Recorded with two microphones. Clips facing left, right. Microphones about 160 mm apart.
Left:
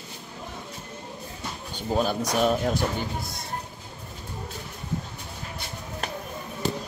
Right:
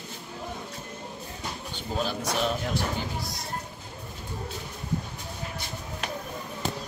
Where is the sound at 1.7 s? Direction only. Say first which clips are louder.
Left 6 dB; 45° left (ahead or behind).